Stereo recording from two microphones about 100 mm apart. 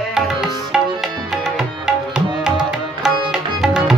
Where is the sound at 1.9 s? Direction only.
5° right (ahead or behind).